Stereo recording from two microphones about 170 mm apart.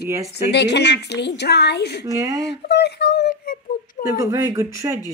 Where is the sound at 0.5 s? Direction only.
90° left.